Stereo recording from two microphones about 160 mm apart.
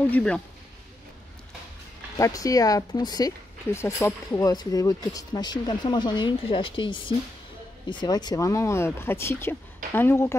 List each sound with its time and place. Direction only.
0.1 s speech: 5° left (ahead or behind)
2.1 s speech: 20° left (ahead or behind)